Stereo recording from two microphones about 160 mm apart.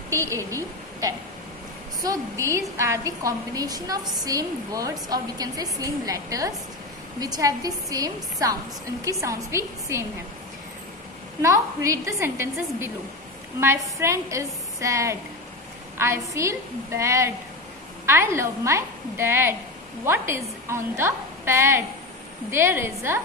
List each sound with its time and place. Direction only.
0.5 s a woman's voice: 20° right (ahead or behind)
11.4 s a woman's voice: 20° right (ahead or behind)